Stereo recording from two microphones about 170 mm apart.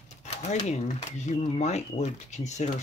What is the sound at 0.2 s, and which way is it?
Speech, 40° left (ahead or behind).